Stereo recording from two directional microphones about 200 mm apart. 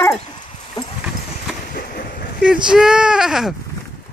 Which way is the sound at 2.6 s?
5° right (ahead or behind).